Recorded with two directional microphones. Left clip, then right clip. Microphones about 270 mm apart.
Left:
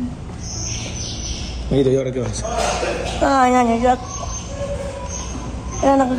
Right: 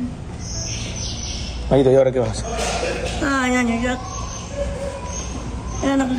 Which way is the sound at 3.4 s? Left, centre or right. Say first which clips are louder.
Left 6 dB; centre.